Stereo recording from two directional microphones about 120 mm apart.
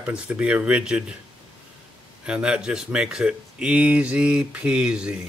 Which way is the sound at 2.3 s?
10° right (ahead or behind).